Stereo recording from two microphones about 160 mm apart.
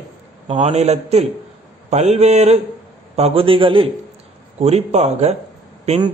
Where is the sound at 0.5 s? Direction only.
40° right (ahead or behind).